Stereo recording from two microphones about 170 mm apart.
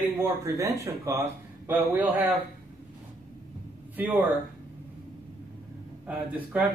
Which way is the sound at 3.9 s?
10° right (ahead or behind).